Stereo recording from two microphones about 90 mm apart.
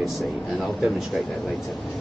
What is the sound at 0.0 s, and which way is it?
Speech, centre (ahead or behind).